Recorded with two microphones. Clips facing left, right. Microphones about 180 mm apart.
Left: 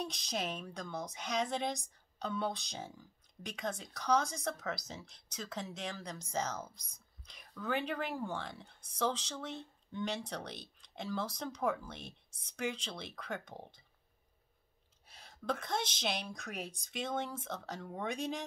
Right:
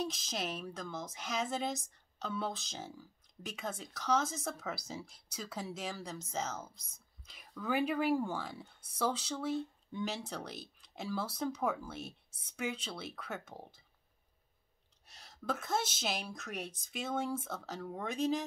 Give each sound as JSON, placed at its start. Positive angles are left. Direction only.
{"t": 0.0, "sound": "a woman's voice", "side_deg": -5}
{"t": 15.4, "sound": "a woman's voice", "side_deg": -5}